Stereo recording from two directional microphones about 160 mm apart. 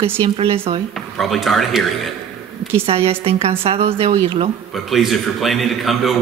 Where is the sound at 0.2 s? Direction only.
35° right (ahead or behind).